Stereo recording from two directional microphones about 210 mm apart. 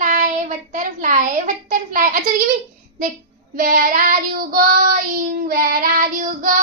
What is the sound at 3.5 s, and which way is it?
Child singing, 40° right (ahead or behind).